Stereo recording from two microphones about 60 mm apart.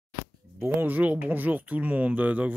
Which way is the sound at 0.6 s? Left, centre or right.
Right.